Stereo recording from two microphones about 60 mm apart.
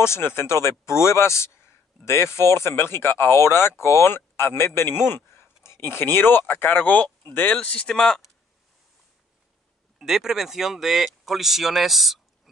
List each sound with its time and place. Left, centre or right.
0.0 s speech: left
0.7 s speech: left
7.9 s speech: centre
9.9 s speech: centre